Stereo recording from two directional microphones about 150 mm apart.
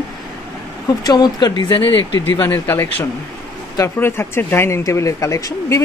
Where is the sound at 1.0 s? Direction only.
30° left (ahead or behind).